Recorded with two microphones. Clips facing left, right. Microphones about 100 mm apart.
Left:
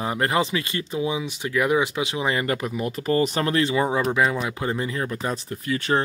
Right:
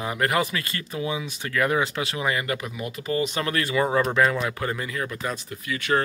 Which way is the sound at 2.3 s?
35° left (ahead or behind).